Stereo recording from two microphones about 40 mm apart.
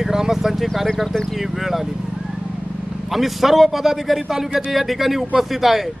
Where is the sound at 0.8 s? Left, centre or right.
Centre.